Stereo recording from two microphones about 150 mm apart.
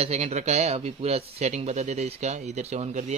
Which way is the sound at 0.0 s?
45° right (ahead or behind).